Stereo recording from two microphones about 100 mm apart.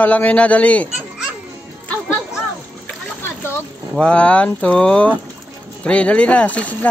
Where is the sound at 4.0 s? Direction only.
10° left (ahead or behind).